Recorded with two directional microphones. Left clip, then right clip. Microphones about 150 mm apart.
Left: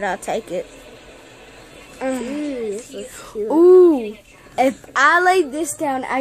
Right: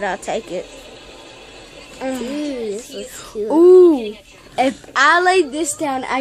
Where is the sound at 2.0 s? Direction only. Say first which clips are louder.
Even; 15° left (ahead or behind).